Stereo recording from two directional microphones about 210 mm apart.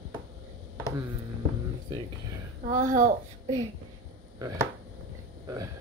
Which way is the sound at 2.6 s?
40° right (ahead or behind).